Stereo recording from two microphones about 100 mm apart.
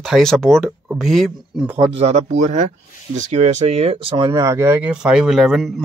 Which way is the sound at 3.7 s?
85° right.